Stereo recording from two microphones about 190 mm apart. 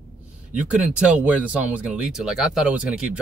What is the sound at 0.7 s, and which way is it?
Speech, 5° right (ahead or behind).